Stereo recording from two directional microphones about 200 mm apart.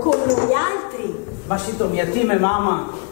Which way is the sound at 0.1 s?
25° left (ahead or behind).